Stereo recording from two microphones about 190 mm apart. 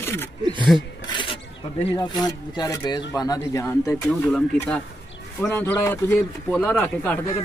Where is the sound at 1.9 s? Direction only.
20° left (ahead or behind).